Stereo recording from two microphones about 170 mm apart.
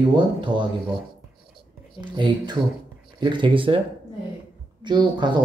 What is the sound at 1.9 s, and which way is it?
Speech, 25° right (ahead or behind).